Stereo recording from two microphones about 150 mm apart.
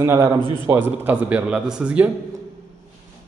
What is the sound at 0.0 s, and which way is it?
A man's voice, 20° right (ahead or behind).